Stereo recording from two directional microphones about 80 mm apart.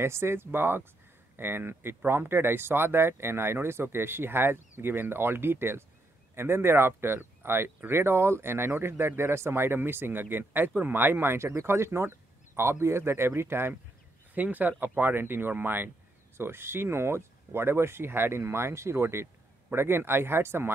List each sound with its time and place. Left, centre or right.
0.0 s speech: right